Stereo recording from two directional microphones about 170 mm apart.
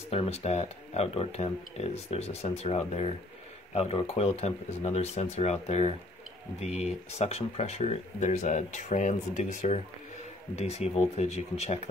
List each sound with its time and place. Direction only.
0.1 s speech: 35° left (ahead or behind)